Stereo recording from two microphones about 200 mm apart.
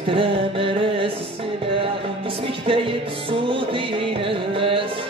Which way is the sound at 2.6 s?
25° right (ahead or behind).